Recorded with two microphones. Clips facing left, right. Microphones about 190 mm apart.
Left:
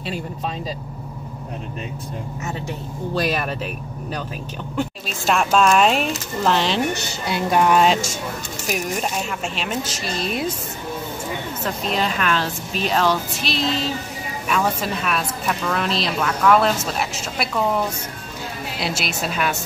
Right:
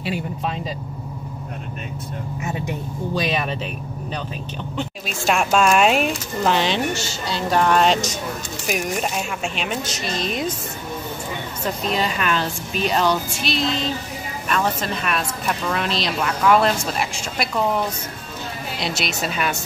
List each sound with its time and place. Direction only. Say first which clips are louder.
3.2 s speech: left 1 dB; centre (ahead or behind)
5.0 s speech: right 2 dB; centre (ahead or behind)
7.0 s a woman's voice: left 1 dB; 60° left (ahead or behind)
7.3 s speech: left 1 dB; 10° left (ahead or behind)
11.6 s speech: right 1 dB; centre (ahead or behind)